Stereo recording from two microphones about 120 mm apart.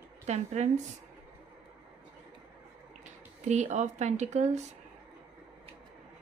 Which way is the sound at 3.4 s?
85° right.